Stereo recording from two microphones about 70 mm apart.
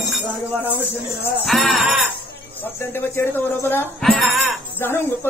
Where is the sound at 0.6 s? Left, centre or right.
Left.